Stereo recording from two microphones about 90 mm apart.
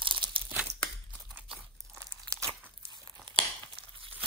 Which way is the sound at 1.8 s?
35° right (ahead or behind).